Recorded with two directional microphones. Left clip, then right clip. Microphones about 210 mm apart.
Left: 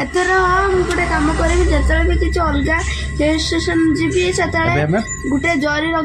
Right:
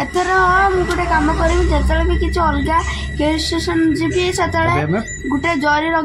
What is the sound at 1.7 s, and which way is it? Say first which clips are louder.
A woman's voice: left 1 dB; 10° right (ahead or behind).